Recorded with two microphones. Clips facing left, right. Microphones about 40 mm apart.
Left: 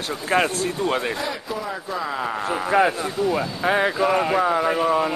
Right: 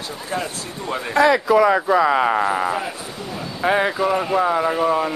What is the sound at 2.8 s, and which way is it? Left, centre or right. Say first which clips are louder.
Speech: left 9 dB; left.